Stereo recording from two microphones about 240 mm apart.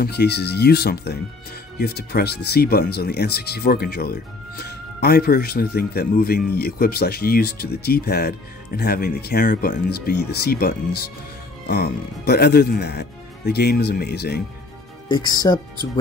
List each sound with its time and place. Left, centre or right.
0.0 s speech: left
15.0 s speech: centre